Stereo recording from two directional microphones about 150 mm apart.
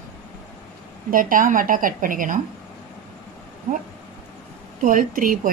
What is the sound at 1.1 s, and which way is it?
A woman's voice, 65° right (ahead or behind).